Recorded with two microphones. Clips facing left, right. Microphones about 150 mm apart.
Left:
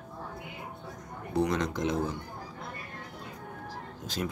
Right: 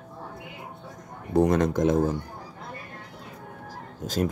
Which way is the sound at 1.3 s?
50° right (ahead or behind).